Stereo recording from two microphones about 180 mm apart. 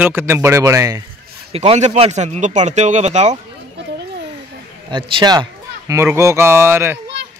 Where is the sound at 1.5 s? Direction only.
35° right (ahead or behind).